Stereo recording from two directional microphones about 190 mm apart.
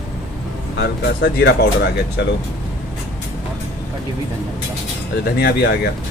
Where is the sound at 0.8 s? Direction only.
60° left (ahead or behind).